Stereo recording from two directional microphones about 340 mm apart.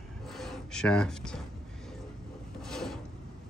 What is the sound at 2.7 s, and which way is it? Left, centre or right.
Filing, centre.